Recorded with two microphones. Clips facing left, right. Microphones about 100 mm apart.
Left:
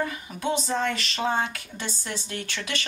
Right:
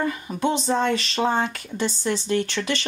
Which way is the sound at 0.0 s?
30° right (ahead or behind).